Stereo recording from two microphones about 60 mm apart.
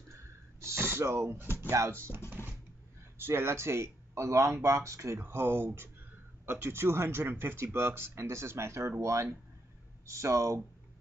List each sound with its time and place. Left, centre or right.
0.1 s a sound: right
1.9 s speech: right
5.2 s speech: right